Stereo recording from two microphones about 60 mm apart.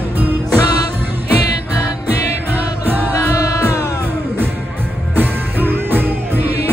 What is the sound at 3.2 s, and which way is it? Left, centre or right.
Music, left.